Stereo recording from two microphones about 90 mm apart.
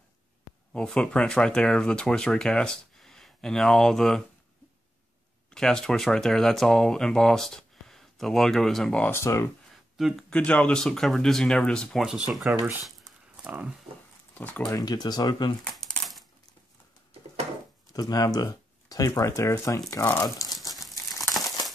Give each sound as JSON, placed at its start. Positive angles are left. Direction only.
{"t": 0.7, "sound": "speech", "side_deg": 10}
{"t": 5.5, "sound": "speech", "side_deg": 5}
{"t": 9.0, "sound": "speech", "side_deg": 30}
{"t": 9.9, "sound": "speech", "side_deg": -5}
{"t": 10.3, "sound": "speech", "side_deg": 15}
{"t": 12.0, "sound": "speech", "side_deg": -5}
{"t": 13.4, "sound": "a sound", "side_deg": -15}
{"t": 14.3, "sound": "speech", "side_deg": 20}
{"t": 14.7, "sound": "speech", "side_deg": 45}
{"t": 15.7, "sound": "crumpling", "side_deg": 0}
{"t": 17.9, "sound": "speech", "side_deg": 45}
{"t": 20.2, "sound": "speech", "side_deg": 45}